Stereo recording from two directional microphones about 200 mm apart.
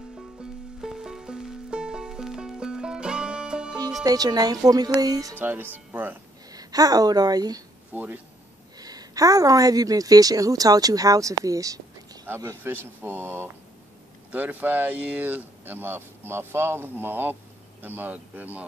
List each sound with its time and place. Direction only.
0.4 s music: 5° right (ahead or behind)
4.0 s a woman's voice: 20° right (ahead or behind)
7.9 s speech: 10° right (ahead or behind)
8.7 s speech: 20° right (ahead or behind)